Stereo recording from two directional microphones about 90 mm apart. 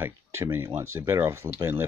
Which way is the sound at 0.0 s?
30° right (ahead or behind).